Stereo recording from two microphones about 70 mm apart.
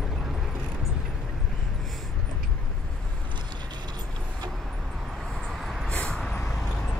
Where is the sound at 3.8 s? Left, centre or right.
Right.